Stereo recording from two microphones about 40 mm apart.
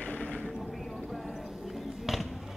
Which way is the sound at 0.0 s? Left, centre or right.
Left.